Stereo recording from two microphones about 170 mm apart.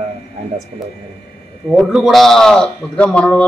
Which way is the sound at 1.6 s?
Centre (ahead or behind).